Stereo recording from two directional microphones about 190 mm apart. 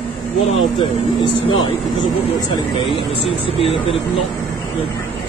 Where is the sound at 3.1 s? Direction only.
30° left (ahead or behind).